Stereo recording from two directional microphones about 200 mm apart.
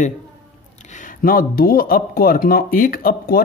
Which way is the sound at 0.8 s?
40° left (ahead or behind).